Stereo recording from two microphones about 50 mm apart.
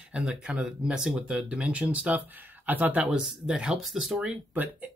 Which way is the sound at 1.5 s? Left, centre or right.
Right.